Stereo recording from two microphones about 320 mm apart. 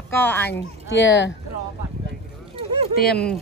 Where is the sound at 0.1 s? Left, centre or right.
Centre.